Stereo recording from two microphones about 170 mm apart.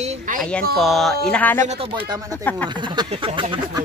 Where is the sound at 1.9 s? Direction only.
25° right (ahead or behind).